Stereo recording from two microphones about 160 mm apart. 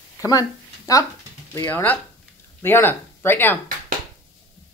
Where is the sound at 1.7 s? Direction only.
10° left (ahead or behind).